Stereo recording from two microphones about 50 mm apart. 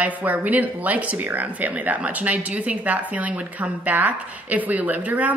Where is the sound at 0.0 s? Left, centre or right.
Right.